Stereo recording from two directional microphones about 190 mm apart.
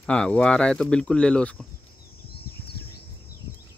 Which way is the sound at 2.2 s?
55° left (ahead or behind).